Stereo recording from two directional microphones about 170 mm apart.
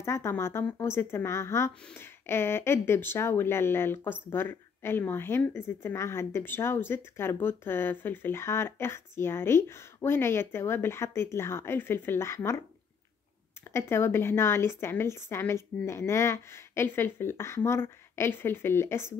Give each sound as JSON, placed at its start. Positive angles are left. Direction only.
{"t": 0.0, "sound": "speech", "side_deg": 15}
{"t": 13.7, "sound": "speech", "side_deg": 15}